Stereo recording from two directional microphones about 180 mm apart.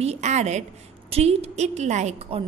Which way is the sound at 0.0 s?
40° right (ahead or behind).